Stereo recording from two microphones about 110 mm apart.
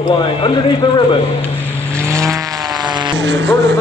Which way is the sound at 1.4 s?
10° left (ahead or behind).